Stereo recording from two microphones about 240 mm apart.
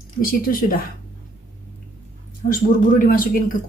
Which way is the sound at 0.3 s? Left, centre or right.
Left.